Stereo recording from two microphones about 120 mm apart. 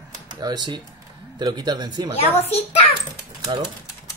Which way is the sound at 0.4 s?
35° right (ahead or behind).